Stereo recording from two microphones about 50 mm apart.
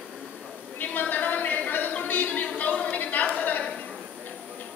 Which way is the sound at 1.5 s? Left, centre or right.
Left.